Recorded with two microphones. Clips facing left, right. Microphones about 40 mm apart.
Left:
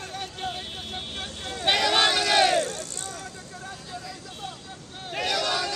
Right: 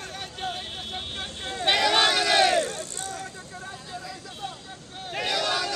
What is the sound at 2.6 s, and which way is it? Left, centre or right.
Vehicle, right.